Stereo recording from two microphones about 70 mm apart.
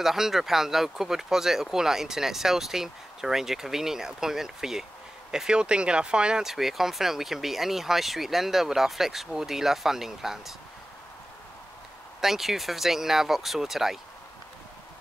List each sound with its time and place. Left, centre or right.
0.0 s speech: centre
12.2 s speech: centre